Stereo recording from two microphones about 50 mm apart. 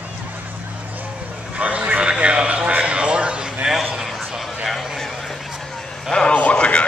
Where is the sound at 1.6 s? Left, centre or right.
Right.